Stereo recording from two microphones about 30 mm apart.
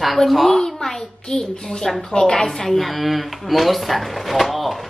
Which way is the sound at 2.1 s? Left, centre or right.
Left.